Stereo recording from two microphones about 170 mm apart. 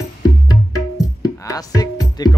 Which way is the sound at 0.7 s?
20° left (ahead or behind).